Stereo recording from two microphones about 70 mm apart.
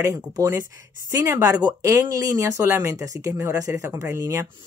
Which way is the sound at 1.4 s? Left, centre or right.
Right.